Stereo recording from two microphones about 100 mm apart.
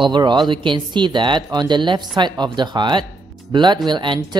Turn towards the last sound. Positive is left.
turn(degrees=-50)  # may be behind; listen again after turning